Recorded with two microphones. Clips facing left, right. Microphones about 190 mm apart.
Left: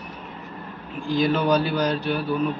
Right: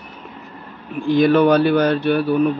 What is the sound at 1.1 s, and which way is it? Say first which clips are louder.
A man's voice: right 7 dB; 60° right (ahead or behind).